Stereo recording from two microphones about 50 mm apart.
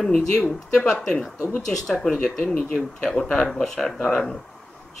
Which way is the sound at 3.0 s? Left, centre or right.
Centre.